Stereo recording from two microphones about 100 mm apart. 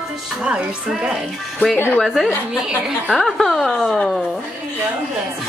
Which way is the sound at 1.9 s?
Centre (ahead or behind).